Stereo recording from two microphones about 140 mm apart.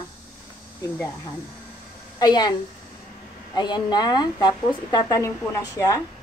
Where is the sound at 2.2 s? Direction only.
30° left (ahead or behind).